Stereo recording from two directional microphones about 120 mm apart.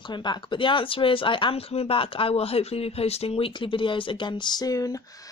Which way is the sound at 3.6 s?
45° left (ahead or behind).